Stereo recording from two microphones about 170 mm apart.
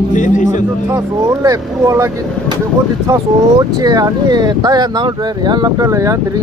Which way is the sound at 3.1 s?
20° right (ahead or behind).